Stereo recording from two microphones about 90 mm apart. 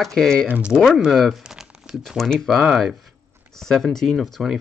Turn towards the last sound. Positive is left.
turn(degrees=0)  # may be behind; listen again after turning